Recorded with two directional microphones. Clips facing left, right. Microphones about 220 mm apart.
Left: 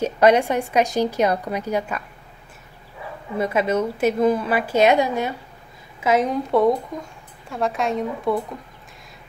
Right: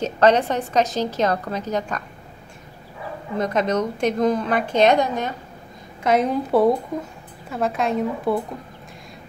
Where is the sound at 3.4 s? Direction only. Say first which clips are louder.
Left 1 dB; 10° left (ahead or behind).